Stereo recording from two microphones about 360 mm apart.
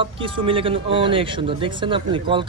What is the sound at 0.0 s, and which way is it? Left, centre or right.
Speech, centre.